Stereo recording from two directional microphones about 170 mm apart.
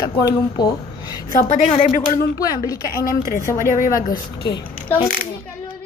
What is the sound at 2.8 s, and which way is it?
A woman's voice, 60° left (ahead or behind).